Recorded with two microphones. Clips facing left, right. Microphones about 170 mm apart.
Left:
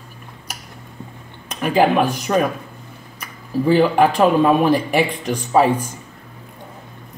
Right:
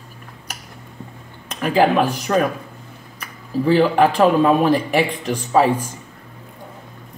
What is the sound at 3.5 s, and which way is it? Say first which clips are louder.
Speech: left 1 dB; 15° left (ahead or behind).